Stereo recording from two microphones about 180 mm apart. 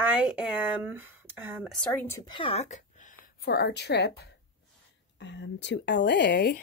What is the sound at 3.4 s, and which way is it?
Speech, 65° left (ahead or behind).